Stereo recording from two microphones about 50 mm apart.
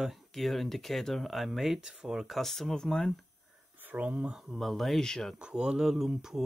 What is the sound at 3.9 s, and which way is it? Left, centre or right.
Speech, right.